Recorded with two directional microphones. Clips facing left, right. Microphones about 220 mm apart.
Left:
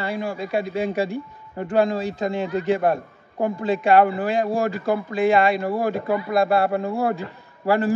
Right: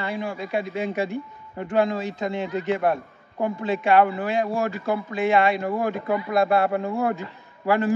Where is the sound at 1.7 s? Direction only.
30° left (ahead or behind).